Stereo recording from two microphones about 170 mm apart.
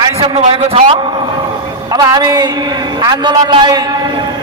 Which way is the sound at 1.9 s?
25° right (ahead or behind).